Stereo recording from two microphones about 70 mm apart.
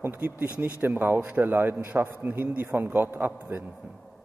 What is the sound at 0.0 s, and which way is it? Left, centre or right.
A man's voice, right.